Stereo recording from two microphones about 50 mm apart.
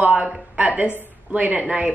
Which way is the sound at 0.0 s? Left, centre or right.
Right.